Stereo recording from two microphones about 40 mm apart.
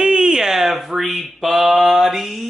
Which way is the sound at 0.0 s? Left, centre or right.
Right.